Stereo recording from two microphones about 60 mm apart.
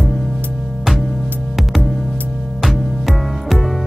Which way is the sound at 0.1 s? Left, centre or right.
Centre.